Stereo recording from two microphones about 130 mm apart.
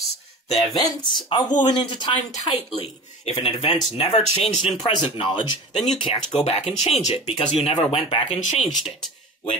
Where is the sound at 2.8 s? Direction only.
50° left (ahead or behind).